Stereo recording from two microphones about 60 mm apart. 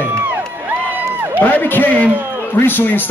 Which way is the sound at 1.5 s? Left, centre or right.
Left.